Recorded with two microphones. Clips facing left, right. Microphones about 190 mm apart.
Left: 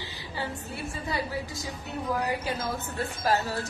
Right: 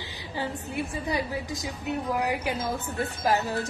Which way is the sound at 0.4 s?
15° right (ahead or behind).